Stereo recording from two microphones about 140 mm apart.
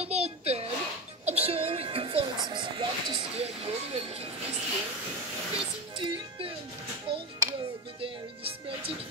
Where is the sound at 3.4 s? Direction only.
45° right (ahead or behind).